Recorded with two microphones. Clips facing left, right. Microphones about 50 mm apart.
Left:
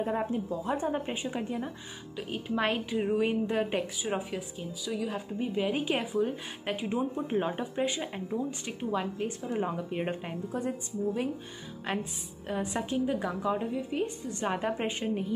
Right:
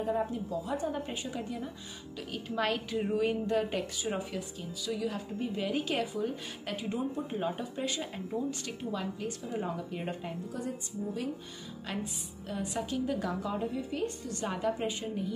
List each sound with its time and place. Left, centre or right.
0.0 s a woman's voice: left
11.9 s a woman's voice: left
13.0 s a woman's voice: centre; by 15.3 s left